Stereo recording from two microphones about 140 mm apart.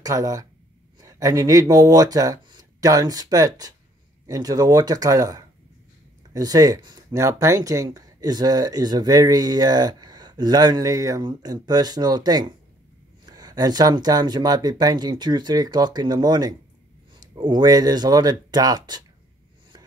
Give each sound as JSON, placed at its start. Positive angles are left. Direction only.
{"t": 0.0, "sound": "speech", "side_deg": -25}